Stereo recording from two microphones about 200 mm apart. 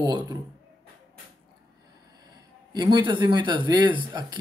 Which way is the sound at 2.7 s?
20° right (ahead or behind).